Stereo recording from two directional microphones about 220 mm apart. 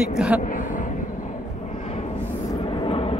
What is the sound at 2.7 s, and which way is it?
Vehicle, 25° left (ahead or behind).